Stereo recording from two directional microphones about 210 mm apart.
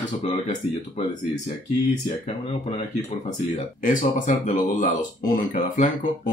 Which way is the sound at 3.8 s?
35° left (ahead or behind).